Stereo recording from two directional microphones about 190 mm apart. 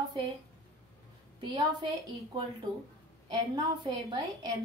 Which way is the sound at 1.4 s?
20° right (ahead or behind).